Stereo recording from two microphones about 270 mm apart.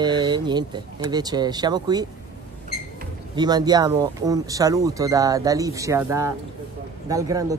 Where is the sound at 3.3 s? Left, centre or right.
Centre.